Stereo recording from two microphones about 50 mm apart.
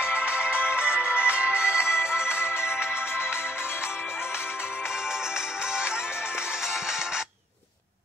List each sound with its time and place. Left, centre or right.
0.0 s music: centre
2.4 s music: left